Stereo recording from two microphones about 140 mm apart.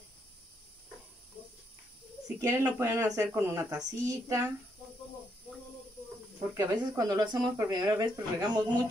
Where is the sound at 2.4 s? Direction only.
20° right (ahead or behind).